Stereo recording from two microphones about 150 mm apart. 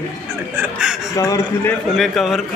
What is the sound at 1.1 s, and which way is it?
Speech, 20° left (ahead or behind).